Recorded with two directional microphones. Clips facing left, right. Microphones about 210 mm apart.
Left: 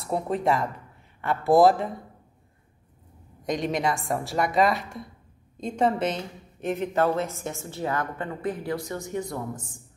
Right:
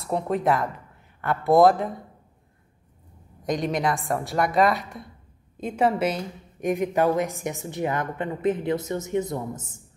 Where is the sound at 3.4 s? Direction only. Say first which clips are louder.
Right 1 dB; centre (ahead or behind).